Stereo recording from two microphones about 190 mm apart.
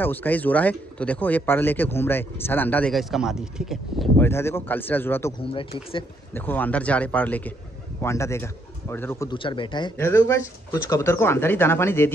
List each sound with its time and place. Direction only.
0.0 s speech: 10° left (ahead or behind)
4.2 s speech: 15° left (ahead or behind)
5.4 s speech: 30° left (ahead or behind)
6.3 s speech: 10° left (ahead or behind)
9.3 s speech: 25° left (ahead or behind)
9.9 s speech: 15° left (ahead or behind)